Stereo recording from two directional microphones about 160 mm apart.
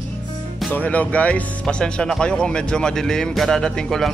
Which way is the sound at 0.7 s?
10° left (ahead or behind).